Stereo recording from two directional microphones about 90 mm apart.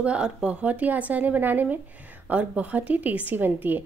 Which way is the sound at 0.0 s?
10° right (ahead or behind).